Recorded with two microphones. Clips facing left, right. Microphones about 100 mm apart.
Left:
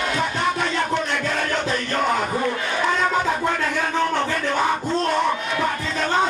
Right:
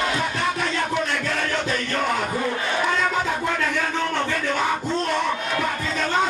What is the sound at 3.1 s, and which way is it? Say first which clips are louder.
Music: left 3 dB; 10° left (ahead or behind).